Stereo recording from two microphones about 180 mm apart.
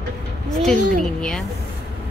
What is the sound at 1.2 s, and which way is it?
Speech, 5° left (ahead or behind).